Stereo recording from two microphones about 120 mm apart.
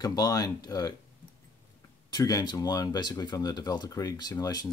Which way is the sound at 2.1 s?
30° left (ahead or behind).